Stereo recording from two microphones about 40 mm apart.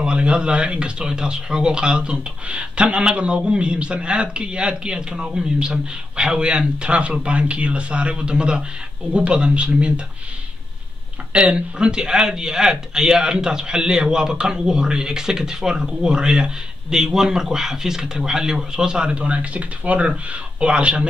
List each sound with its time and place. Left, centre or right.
0.0 s speech: right
11.3 s speech: right
19.0 s speech: right